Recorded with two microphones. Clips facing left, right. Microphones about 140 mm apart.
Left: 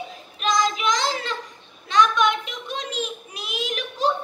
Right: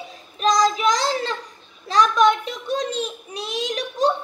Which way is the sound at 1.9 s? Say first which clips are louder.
Right 3 dB; 40° right (ahead or behind).